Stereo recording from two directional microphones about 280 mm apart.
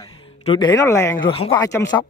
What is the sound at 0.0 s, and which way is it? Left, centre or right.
Speech, centre.